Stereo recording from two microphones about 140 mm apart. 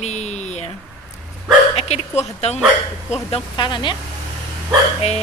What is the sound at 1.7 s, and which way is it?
Speech, 50° left (ahead or behind).